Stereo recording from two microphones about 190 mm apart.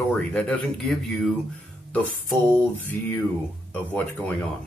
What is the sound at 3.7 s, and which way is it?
Speech, 10° left (ahead or behind).